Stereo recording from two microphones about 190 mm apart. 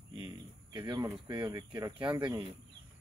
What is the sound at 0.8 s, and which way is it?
Speech, 20° right (ahead or behind).